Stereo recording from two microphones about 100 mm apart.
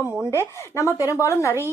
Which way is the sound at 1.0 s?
30° left (ahead or behind).